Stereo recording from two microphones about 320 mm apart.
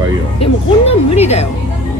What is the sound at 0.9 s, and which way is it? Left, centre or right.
Speech, centre.